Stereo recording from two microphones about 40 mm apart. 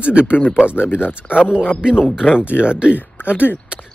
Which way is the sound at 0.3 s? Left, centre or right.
Left.